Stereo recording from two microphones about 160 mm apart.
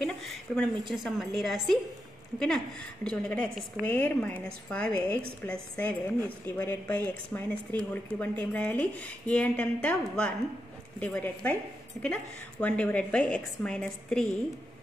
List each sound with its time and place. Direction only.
0.0 s a woman's voice: centre (ahead or behind)